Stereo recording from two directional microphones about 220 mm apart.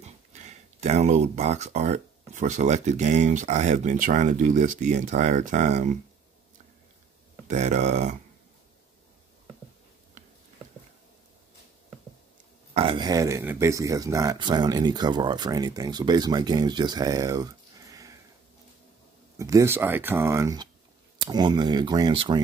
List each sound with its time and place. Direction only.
0.0 s speech: 30° right (ahead or behind)
7.4 s speech: 35° right (ahead or behind)
12.7 s speech: 25° right (ahead or behind)
19.3 s speech: 15° right (ahead or behind)